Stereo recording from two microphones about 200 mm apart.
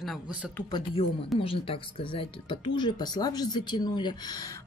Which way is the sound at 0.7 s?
25° left (ahead or behind).